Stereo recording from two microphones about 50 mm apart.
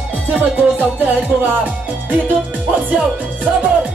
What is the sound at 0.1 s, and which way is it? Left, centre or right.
Music, right.